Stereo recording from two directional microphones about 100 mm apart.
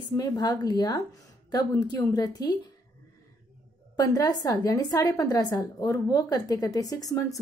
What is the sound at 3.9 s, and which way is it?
A woman's voice, 35° left (ahead or behind).